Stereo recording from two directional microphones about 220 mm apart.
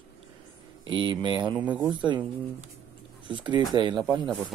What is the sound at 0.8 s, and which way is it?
Speech, 20° right (ahead or behind).